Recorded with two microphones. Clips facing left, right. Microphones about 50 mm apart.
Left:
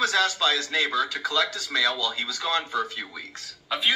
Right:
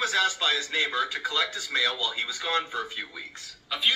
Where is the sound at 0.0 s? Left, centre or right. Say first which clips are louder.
Left 3 dB; right.